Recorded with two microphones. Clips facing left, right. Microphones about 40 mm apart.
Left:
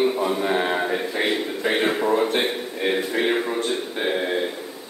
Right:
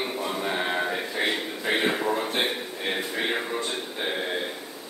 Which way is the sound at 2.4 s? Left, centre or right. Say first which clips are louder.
Left 5 dB; centre.